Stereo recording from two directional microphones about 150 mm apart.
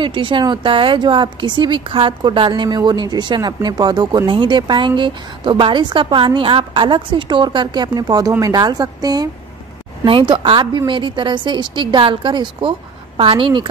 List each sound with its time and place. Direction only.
0.0 s a woman's voice: 35° right (ahead or behind)